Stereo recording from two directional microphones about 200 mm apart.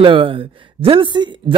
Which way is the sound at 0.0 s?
25° right (ahead or behind).